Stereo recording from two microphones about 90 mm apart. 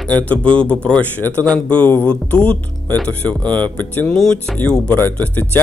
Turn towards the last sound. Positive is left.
turn(degrees=20)  # may be behind; listen again after turning